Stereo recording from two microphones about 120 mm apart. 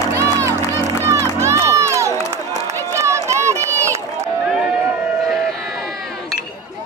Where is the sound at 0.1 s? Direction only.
25° right (ahead or behind).